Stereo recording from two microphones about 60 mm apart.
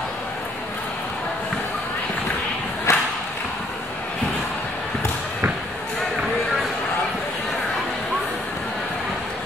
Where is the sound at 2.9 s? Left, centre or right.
Left.